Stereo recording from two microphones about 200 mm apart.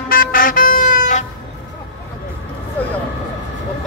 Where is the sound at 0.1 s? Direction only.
45° left (ahead or behind).